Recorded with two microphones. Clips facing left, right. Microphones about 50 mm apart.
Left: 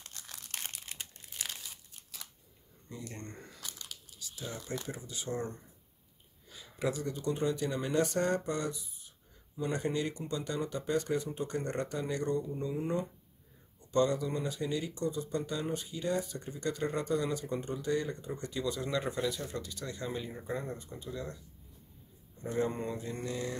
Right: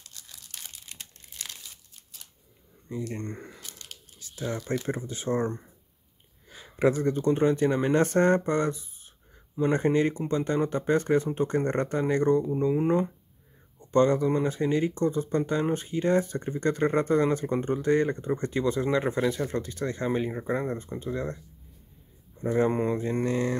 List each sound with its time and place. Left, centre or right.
0.0 s crumpling: left
0.8 s crumpling: centre
3.1 s speech: right
4.2 s crumpling: right
4.6 s speech: right
22.4 s speech: right